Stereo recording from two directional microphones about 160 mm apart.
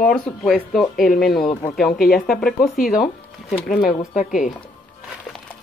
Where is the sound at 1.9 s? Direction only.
65° left (ahead or behind).